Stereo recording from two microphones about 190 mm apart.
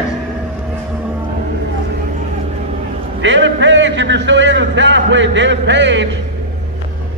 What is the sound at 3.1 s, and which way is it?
A man's voice, 75° right (ahead or behind).